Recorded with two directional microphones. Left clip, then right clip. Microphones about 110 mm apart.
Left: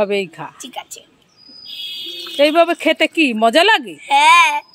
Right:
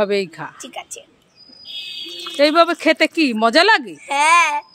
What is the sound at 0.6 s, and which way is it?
Speech, 30° right (ahead or behind).